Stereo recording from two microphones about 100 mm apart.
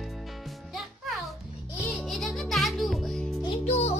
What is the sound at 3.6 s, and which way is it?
Music, 90° left.